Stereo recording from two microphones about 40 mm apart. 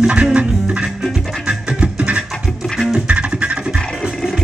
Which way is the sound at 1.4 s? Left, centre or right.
Right.